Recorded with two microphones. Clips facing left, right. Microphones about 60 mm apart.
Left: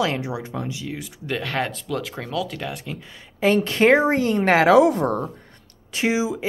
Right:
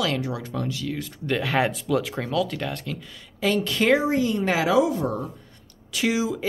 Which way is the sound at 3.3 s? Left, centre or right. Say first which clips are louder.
Left 4 dB; left.